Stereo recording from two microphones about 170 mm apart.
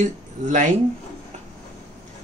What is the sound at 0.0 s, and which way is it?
Speech, 45° right (ahead or behind).